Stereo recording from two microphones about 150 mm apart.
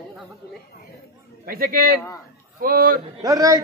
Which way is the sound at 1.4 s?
80° right.